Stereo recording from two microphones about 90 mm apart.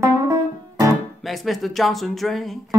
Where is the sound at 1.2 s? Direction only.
Centre (ahead or behind).